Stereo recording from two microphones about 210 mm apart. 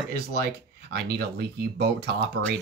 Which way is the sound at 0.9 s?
50° right (ahead or behind).